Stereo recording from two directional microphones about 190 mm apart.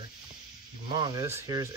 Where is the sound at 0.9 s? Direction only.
25° right (ahead or behind).